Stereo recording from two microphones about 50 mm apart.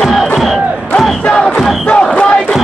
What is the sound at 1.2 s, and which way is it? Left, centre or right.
Crowd, centre.